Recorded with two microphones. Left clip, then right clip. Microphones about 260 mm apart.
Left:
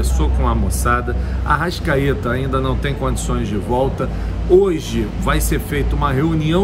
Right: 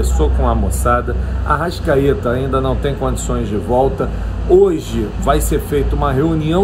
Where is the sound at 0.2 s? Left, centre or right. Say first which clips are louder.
Right 4 dB; left.